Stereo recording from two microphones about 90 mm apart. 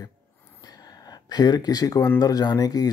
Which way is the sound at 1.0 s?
50° left (ahead or behind).